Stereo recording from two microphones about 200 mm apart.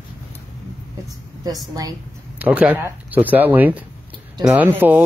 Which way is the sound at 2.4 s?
5° right (ahead or behind).